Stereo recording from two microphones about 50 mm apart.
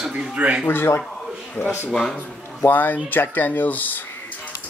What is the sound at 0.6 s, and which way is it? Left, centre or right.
Speech, left.